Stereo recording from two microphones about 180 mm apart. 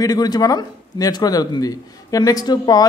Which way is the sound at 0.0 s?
20° left (ahead or behind).